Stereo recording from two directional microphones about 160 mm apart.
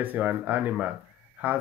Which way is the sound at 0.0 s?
10° right (ahead or behind).